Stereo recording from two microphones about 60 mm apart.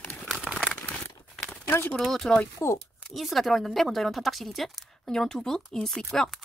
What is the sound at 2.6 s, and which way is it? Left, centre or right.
Speech, left.